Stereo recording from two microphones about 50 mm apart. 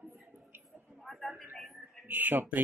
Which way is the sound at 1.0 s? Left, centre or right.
Centre.